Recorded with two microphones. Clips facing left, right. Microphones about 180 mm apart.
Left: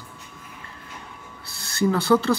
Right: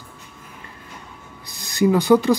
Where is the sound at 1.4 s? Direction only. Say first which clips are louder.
Right 4 dB; 15° right (ahead or behind).